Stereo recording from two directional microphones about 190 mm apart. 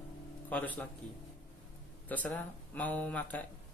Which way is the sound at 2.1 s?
10° left (ahead or behind).